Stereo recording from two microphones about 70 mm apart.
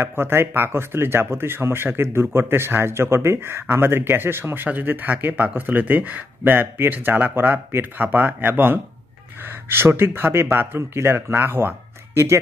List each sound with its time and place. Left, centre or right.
0.0 s speech: right